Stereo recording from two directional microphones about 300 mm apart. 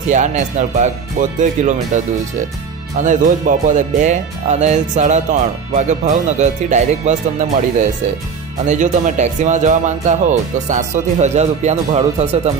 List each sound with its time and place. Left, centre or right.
0.1 s speech: right
3.0 s speech: right
8.6 s speech: right